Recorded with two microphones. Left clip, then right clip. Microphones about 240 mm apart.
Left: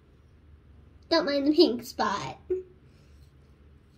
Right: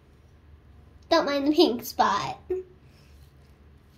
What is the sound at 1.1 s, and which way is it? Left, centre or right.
Speech, right.